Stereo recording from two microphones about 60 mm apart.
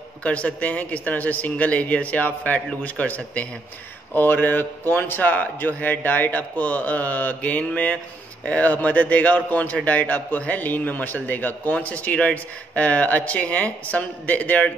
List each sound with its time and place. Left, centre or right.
0.2 s a man's voice: left